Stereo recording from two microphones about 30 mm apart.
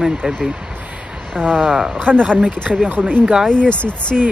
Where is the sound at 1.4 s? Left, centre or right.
Right.